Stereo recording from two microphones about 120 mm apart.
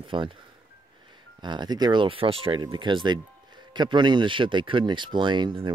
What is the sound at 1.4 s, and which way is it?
Speech, 40° right (ahead or behind).